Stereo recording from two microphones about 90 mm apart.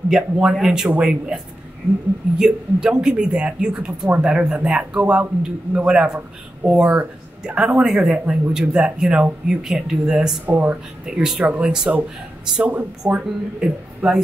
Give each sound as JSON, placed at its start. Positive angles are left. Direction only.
{"t": 0.1, "sound": "speech", "side_deg": -5}
{"t": 10.4, "sound": "speech", "side_deg": -20}
{"t": 11.1, "sound": "speech", "side_deg": -10}